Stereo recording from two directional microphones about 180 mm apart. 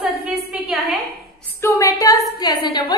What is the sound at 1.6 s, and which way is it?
A woman's voice, 15° left (ahead or behind).